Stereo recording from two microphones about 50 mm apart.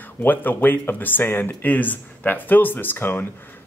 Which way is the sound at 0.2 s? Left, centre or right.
Left.